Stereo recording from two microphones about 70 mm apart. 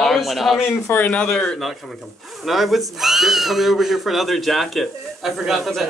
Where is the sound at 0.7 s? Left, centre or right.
Left.